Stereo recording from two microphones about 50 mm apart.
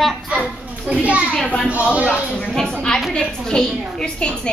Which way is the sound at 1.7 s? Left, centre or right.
Right.